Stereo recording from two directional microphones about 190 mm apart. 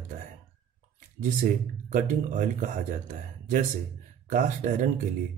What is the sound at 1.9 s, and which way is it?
Speech, 40° right (ahead or behind).